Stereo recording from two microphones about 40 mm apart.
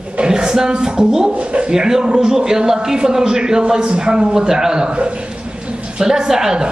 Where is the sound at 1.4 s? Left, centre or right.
Right.